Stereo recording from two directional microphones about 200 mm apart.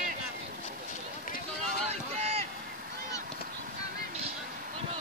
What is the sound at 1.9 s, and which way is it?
Run, 30° right (ahead or behind).